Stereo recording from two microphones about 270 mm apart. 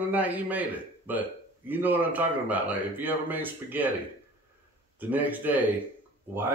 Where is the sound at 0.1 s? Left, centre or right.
Centre.